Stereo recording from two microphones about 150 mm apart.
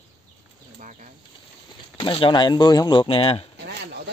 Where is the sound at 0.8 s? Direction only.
55° right (ahead or behind).